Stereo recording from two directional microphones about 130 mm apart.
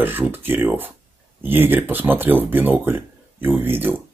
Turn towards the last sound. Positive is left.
turn(degrees=-15)  # may be behind; listen again after turning